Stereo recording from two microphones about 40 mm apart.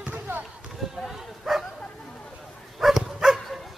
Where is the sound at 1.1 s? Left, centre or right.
Centre.